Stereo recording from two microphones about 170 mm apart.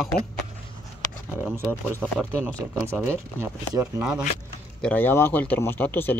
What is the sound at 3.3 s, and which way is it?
Speech, 15° right (ahead or behind).